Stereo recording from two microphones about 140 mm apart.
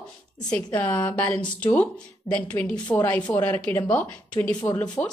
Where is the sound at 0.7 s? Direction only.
15° left (ahead or behind).